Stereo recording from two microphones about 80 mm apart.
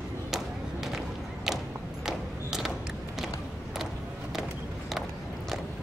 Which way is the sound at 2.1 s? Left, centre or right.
Centre.